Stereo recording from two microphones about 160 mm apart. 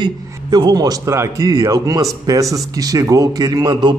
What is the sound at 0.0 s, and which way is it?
A man's voice, 25° right (ahead or behind).